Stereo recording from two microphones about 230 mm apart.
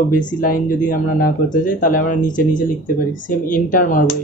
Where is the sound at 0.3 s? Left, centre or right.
Left.